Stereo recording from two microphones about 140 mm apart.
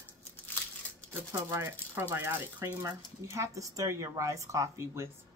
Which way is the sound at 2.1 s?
15° right (ahead or behind).